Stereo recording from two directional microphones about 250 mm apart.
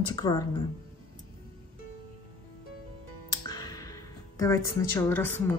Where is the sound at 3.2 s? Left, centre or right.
Centre.